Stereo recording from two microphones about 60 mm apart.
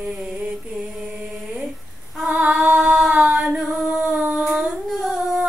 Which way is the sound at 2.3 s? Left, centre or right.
Right.